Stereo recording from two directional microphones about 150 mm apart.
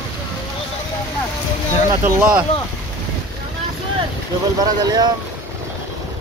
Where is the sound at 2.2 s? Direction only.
10° right (ahead or behind).